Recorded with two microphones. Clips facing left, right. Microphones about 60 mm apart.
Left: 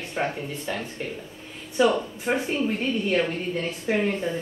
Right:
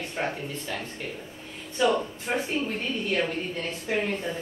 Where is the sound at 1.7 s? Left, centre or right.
Centre.